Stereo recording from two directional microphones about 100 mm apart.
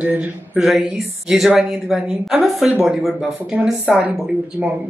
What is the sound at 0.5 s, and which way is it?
Speech, 5° right (ahead or behind).